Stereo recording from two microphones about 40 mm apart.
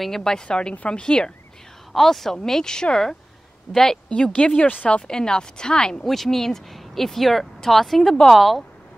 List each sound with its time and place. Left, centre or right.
0.0 s speech: centre
0.5 s a woman's voice: left
1.9 s speech: centre
4.1 s a woman's voice: left
6.0 s speech: centre